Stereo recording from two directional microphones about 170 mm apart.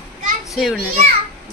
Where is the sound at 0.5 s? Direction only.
Centre (ahead or behind).